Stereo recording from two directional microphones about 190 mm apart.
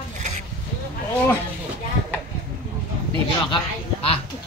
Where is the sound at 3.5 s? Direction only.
30° left (ahead or behind).